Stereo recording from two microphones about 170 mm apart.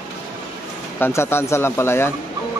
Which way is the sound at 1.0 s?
15° left (ahead or behind).